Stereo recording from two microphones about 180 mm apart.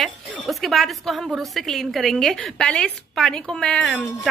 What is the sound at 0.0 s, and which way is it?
A woman's voice, centre (ahead or behind).